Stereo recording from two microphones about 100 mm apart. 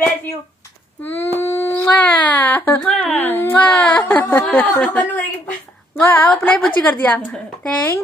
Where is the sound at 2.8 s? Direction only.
5° left (ahead or behind).